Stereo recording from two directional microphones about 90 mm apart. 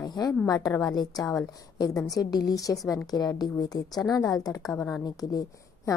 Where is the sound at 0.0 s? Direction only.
45° left (ahead or behind).